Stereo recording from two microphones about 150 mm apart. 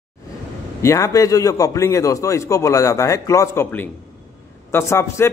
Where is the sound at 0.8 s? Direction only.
20° left (ahead or behind).